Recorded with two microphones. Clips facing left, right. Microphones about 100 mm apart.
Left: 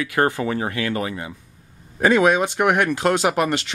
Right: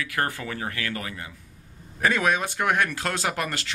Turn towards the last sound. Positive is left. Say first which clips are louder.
# left 8 dB
turn(degrees=20)  # may be behind; listen again after turning